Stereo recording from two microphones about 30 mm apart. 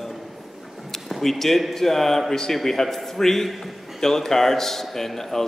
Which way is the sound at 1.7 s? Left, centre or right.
Centre.